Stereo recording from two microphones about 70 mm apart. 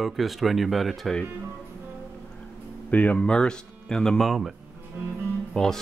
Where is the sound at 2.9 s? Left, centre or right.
Left.